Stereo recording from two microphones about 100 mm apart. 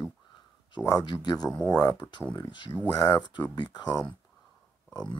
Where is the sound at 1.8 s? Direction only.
45° left (ahead or behind).